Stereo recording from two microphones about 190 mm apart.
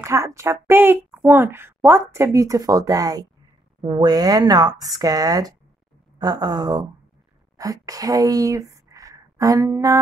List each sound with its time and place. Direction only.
0.0 s a woman's voice: 15° right (ahead or behind)